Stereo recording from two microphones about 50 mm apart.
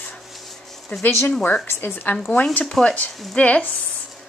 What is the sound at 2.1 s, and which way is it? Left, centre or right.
Speech, left.